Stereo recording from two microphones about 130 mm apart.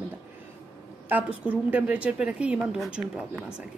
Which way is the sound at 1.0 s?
10° right (ahead or behind).